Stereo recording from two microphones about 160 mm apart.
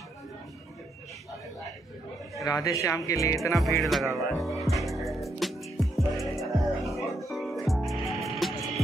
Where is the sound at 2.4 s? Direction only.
20° left (ahead or behind).